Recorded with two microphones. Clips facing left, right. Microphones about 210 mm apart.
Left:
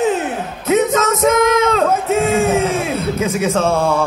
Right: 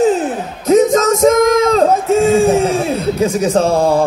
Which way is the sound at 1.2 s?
40° right (ahead or behind).